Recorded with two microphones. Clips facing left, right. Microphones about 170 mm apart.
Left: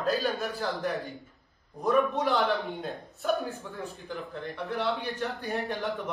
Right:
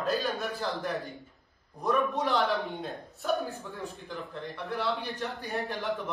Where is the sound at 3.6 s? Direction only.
Centre (ahead or behind).